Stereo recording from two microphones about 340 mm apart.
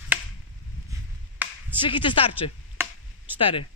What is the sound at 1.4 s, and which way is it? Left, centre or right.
Clapping, centre.